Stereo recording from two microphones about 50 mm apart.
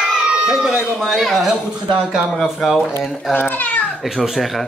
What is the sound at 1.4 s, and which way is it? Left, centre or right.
Speech, centre.